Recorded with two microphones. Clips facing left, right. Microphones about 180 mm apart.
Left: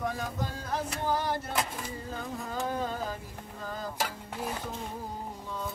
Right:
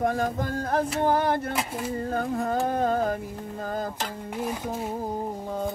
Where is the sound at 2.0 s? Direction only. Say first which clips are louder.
Right 13 dB; 60° right (ahead or behind).